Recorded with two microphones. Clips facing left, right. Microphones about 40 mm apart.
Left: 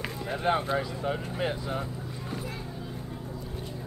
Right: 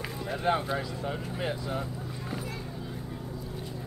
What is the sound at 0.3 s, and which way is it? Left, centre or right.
Speech, left.